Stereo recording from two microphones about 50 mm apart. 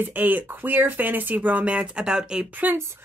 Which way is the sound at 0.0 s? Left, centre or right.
Right.